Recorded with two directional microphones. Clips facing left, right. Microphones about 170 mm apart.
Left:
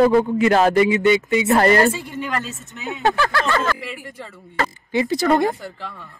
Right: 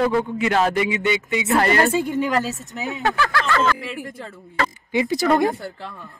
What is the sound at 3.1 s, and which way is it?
Speech, 35° left (ahead or behind).